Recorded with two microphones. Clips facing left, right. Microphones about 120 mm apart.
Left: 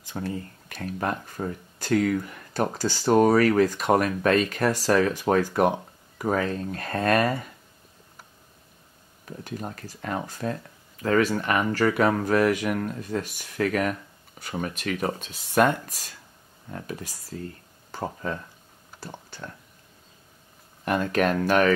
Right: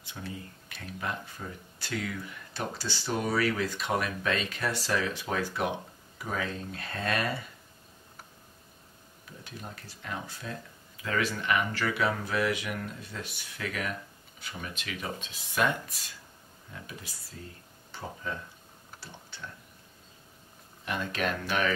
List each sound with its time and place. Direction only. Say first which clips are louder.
0.0 s speech: left 9 dB; 45° left (ahead or behind)
9.4 s speech: left 9 dB; 50° left (ahead or behind)
17.9 s speech: left 7 dB; 45° left (ahead or behind)
20.8 s speech: left 9 dB; 45° left (ahead or behind)